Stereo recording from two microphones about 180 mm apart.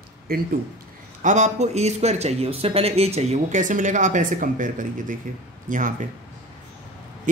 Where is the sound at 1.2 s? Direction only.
40° right (ahead or behind).